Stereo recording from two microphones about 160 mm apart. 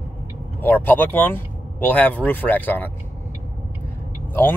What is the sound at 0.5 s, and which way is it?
Speech, 10° left (ahead or behind).